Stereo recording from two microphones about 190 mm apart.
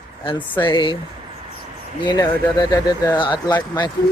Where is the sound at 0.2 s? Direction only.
25° left (ahead or behind).